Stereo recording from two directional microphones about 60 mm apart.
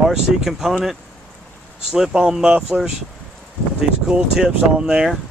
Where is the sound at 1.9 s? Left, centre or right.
Centre.